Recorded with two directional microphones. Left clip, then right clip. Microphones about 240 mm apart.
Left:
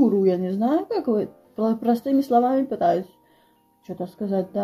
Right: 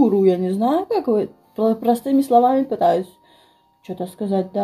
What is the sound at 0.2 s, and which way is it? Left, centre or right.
Speech, centre.